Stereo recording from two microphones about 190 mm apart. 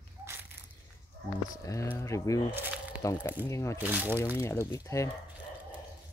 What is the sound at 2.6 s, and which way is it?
Squish, 10° right (ahead or behind).